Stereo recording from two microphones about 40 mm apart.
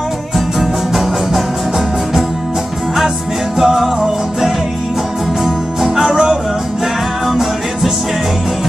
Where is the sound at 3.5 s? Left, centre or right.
Centre.